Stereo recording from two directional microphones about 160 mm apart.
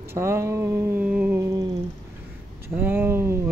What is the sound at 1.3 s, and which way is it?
Speech, 20° right (ahead or behind).